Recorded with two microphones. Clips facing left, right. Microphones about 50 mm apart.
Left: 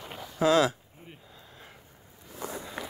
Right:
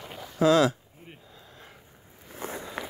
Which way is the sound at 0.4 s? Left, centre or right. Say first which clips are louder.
Right 2 dB; left.